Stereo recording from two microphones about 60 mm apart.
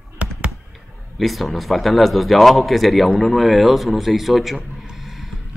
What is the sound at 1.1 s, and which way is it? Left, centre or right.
A man's voice, centre.